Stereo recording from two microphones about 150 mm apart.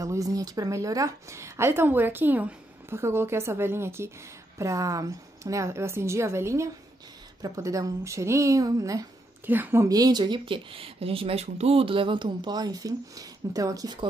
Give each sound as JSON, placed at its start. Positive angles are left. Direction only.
{"t": 0.0, "sound": "a woman's voice", "side_deg": -20}